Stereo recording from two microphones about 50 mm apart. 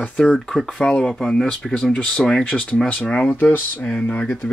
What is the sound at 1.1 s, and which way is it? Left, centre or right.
Speech, centre.